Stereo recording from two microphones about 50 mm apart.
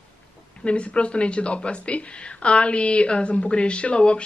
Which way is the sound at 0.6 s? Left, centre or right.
Left.